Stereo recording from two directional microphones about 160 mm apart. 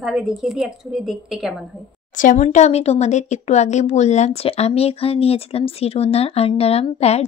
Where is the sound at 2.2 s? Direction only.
50° left (ahead or behind).